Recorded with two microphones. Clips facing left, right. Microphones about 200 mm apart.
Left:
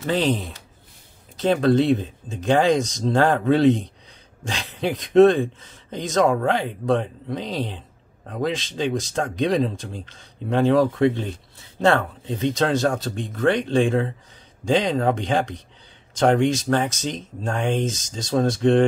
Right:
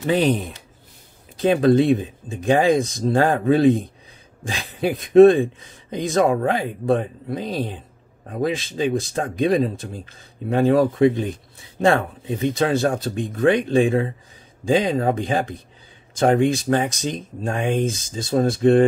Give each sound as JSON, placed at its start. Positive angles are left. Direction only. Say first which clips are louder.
{"t": 0.0, "sound": "speech", "louder": "right 3 dB", "side_deg": -15}